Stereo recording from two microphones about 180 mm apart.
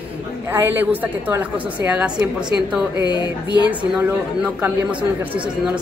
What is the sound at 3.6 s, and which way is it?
Speech, 5° right (ahead or behind).